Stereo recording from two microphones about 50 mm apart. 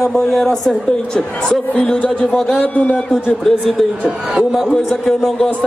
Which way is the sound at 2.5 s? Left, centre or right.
Left.